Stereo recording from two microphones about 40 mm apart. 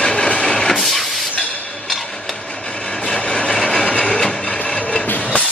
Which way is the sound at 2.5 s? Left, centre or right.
Left.